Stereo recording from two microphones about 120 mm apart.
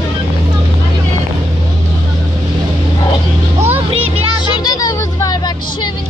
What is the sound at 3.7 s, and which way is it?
Music, 55° right (ahead or behind).